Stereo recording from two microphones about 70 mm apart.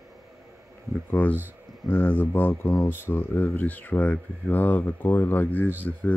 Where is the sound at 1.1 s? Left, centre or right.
Left.